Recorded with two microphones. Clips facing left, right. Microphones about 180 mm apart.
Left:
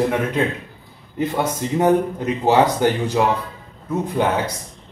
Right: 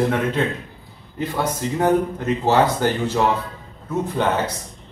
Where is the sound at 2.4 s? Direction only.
15° left (ahead or behind).